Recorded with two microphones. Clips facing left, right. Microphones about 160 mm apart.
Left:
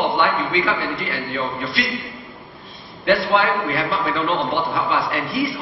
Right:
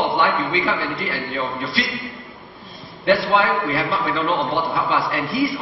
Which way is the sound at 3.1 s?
Centre (ahead or behind).